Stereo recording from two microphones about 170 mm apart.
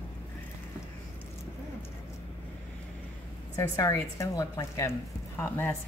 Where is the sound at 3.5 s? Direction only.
20° left (ahead or behind).